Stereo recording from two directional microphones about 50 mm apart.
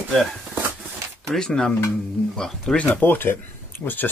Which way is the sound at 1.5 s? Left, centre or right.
Centre.